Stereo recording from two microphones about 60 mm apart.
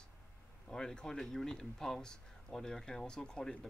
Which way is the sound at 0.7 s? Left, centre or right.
Centre.